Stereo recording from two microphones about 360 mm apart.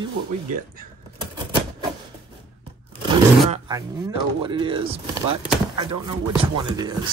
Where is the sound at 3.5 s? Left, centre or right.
Centre.